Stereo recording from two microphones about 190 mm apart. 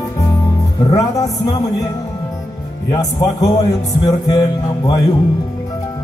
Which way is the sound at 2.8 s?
20° left (ahead or behind).